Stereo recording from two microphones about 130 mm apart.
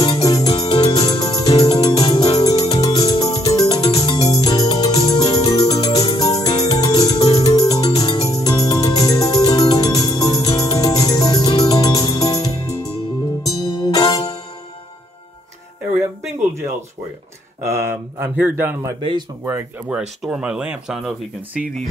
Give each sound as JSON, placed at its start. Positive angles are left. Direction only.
{"t": 0.0, "sound": "music", "side_deg": 25}
{"t": 0.7, "sound": "music", "side_deg": 50}
{"t": 0.9, "sound": "music", "side_deg": 30}
{"t": 17.6, "sound": "a sound", "side_deg": -20}
{"t": 18.9, "sound": "speech", "side_deg": -35}
{"t": 19.9, "sound": "speech", "side_deg": -5}